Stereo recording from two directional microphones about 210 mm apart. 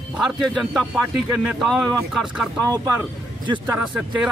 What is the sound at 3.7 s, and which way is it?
Speech, 5° right (ahead or behind).